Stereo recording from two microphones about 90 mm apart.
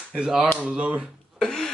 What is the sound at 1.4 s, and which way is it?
Speech, 5° left (ahead or behind).